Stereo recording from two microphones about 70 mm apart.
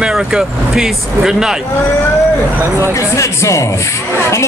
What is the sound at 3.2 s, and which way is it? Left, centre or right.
Speech, left.